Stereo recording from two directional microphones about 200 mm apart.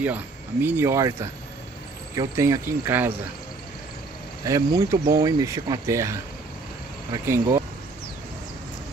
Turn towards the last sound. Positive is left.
turn(degrees=-15)  # may be behind; listen again after turning